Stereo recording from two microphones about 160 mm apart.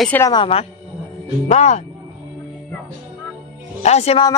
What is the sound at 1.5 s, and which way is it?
Speech, 45° left (ahead or behind).